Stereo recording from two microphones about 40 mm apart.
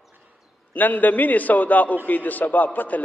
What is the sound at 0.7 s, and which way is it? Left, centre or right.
A man's voice, left.